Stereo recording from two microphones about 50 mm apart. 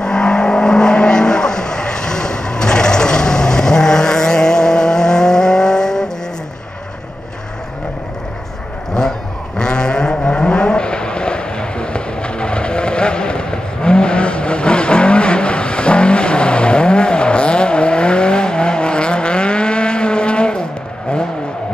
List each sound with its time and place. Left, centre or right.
0.0 s vehicle: centre
9.6 s vehicle: centre